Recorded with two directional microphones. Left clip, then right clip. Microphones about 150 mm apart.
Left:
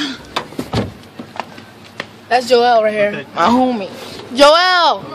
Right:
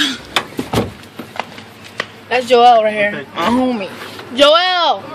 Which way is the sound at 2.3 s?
25° left (ahead or behind).